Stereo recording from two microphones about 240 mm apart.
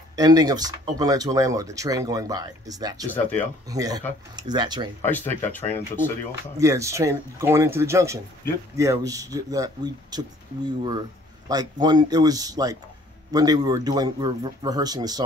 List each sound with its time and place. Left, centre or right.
0.1 s speech: centre
3.1 s speech: centre
3.6 s speech: centre
5.0 s speech: centre
6.6 s speech: centre
11.4 s speech: centre